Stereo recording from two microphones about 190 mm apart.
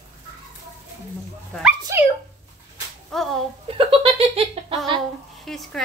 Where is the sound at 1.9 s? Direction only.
15° right (ahead or behind).